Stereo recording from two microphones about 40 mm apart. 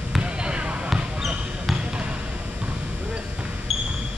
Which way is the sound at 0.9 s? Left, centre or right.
Centre.